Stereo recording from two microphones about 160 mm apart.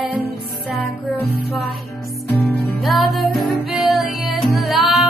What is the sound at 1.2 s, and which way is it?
Music, 75° left (ahead or behind).